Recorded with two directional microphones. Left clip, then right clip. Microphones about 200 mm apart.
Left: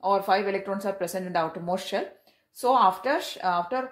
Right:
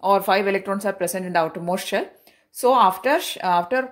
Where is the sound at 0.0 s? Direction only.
35° right (ahead or behind).